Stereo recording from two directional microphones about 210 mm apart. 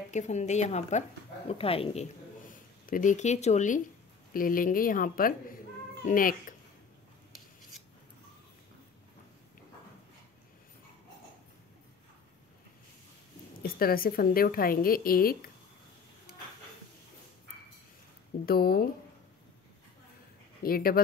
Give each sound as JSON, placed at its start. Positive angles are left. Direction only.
{"t": 0.1, "sound": "speech", "side_deg": 35}
{"t": 2.4, "sound": "speech", "side_deg": 40}
{"t": 13.6, "sound": "a woman's voice", "side_deg": 45}
{"t": 18.4, "sound": "a woman's voice", "side_deg": 45}
{"t": 20.6, "sound": "a woman's voice", "side_deg": 45}